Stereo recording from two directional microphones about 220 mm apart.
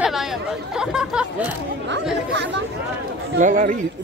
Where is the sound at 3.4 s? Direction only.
35° right (ahead or behind).